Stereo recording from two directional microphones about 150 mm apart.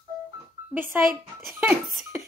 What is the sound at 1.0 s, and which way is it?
Speech, centre (ahead or behind).